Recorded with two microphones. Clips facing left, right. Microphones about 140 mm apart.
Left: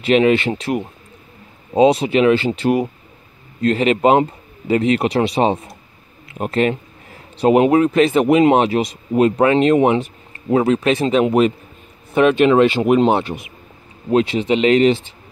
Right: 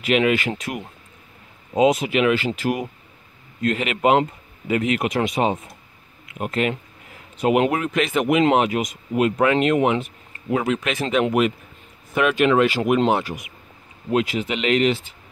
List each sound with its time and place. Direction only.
0.0 s speech: 30° left (ahead or behind)
7.1 s a sound: 35° left (ahead or behind)
7.6 s speech: 30° left (ahead or behind)